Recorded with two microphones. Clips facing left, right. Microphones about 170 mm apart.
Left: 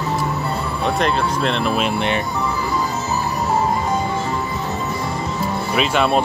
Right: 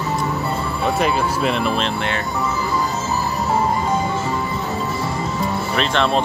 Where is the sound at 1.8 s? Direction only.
15° left (ahead or behind).